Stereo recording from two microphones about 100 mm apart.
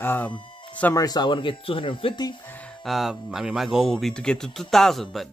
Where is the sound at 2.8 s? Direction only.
Centre (ahead or behind).